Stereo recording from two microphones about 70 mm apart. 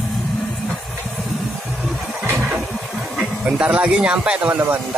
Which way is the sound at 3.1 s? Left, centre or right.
Centre.